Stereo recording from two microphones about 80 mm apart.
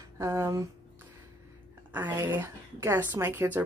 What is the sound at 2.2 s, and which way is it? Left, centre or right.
Speech, right.